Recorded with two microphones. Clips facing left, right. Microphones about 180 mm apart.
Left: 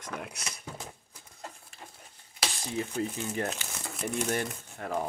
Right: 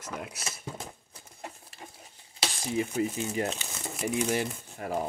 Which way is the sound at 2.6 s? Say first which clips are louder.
Right 4 dB; 15° right (ahead or behind).